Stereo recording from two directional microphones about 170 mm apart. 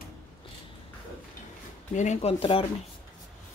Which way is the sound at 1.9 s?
45° left (ahead or behind).